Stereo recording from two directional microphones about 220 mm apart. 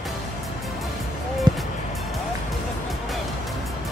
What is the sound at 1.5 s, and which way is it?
Music, 20° right (ahead or behind).